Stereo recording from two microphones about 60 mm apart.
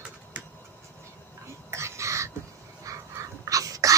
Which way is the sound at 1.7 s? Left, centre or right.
Right.